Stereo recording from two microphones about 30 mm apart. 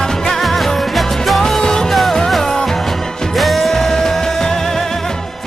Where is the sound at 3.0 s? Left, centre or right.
Centre.